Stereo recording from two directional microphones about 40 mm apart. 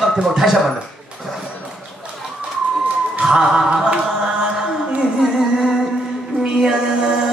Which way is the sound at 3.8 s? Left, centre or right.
Right.